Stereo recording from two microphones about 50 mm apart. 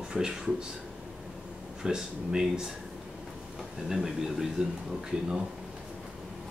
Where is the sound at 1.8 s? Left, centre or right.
Centre.